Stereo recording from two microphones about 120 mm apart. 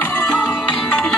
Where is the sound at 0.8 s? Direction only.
5° left (ahead or behind).